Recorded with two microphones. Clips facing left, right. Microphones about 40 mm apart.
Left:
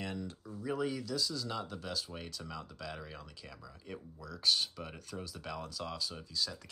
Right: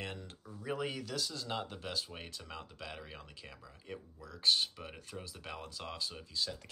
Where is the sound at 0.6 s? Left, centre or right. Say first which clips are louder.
Left 2 dB; right.